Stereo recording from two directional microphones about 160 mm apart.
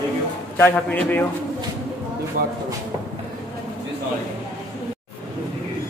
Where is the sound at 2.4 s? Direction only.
60° right (ahead or behind).